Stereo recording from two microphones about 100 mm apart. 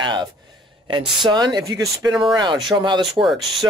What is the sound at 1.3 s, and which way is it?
Speech, 40° right (ahead or behind).